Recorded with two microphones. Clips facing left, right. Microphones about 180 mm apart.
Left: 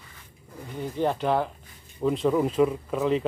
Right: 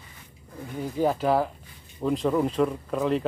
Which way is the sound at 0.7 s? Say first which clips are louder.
Right 1 dB; 5° right (ahead or behind).